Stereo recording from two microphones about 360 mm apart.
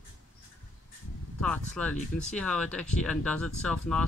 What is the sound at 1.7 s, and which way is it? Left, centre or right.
Speech, centre.